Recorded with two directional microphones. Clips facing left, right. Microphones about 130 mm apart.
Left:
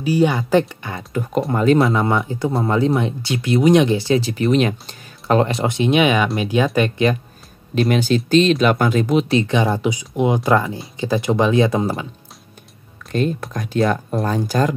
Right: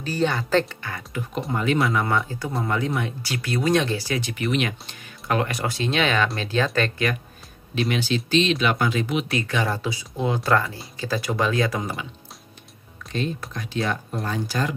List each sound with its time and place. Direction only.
0.0 s speech: 10° left (ahead or behind)
1.5 s speech: 40° left (ahead or behind)
1.8 s speech: 25° left (ahead or behind)
7.9 s speech: 45° left (ahead or behind)
9.3 s speech: 25° left (ahead or behind)
13.1 s speech: 50° left (ahead or behind)